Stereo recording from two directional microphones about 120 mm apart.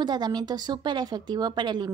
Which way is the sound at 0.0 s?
35° right (ahead or behind).